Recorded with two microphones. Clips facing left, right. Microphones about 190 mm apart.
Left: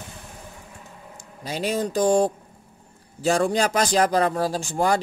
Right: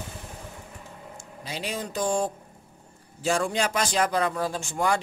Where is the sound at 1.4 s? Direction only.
40° left (ahead or behind).